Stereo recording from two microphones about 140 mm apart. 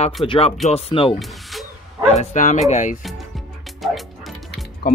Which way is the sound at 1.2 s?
Centre (ahead or behind).